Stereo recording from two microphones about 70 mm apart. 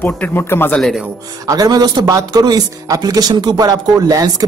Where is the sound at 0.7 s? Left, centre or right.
Centre.